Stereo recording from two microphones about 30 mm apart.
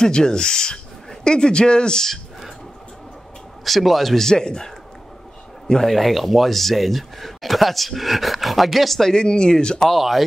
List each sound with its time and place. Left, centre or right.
0.0 s speech: left
3.6 s speech: centre
4.3 s speech: left
5.9 s speech: centre
9.1 s speech: left
9.8 s speech: centre